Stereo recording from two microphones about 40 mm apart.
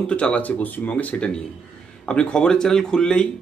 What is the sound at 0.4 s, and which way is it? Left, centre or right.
Speech, left.